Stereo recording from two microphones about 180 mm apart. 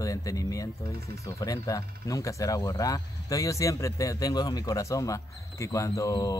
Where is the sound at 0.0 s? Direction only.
20° left (ahead or behind).